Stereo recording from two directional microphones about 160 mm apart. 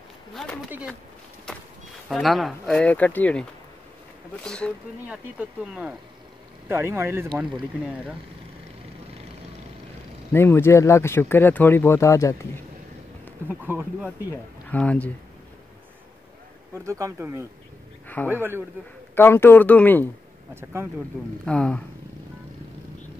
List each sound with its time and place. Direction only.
0.3 s a woman's voice: centre (ahead or behind)
2.0 s speech: centre (ahead or behind)
5.0 s speech: 10° right (ahead or behind)
10.3 s speech: 15° left (ahead or behind)
13.5 s speech: 10° right (ahead or behind)
14.7 s speech: 10° left (ahead or behind)
16.7 s speech: 20° right (ahead or behind)
18.0 s a sound: 10° left (ahead or behind)
18.3 s speech: 15° right (ahead or behind)
19.1 s speech: 15° left (ahead or behind)
21.5 s speech: 5° left (ahead or behind)